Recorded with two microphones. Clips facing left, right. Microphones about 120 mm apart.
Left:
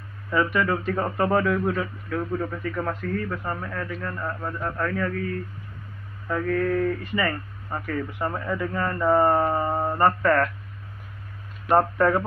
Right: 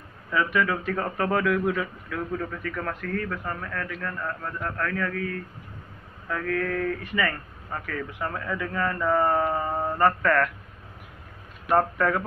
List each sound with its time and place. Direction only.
0.3 s speech: 5° left (ahead or behind)
6.2 s speech: 10° left (ahead or behind)
11.6 s speech: 25° left (ahead or behind)